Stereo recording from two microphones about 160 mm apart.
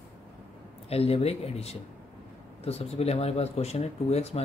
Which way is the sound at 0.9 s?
40° left (ahead or behind).